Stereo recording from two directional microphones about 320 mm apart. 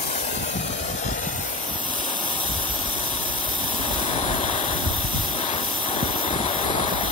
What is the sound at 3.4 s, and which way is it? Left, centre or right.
Vehicle, centre.